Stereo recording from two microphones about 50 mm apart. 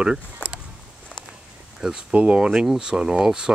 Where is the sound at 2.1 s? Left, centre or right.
Right.